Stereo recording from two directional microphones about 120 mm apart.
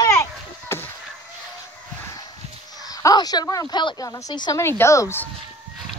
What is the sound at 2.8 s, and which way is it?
A woman's voice, 30° left (ahead or behind).